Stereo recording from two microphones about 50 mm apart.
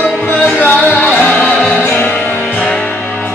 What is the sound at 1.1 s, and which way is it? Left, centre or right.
Music, left.